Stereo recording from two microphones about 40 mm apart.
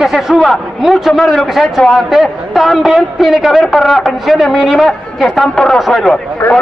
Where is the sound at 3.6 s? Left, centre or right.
Centre.